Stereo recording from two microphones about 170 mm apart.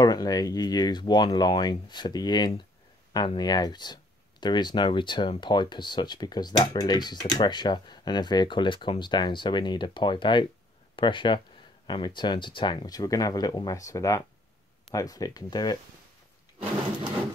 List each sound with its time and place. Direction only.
0.0 s speech: 25° left (ahead or behind)